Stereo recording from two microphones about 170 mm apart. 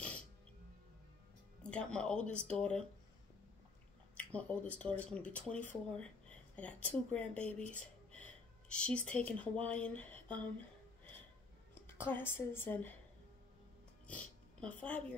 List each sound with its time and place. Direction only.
1.6 s speech: 5° left (ahead or behind)
4.2 s speech: 10° left (ahead or behind)
8.1 s a sound: 5° left (ahead or behind)
9.4 s speech: 10° left (ahead or behind)
11.7 s a woman's voice: 15° left (ahead or behind)
14.0 s a sound: 10° left (ahead or behind)